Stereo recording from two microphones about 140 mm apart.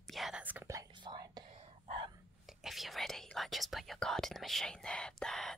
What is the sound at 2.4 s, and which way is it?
Whispering, centre (ahead or behind).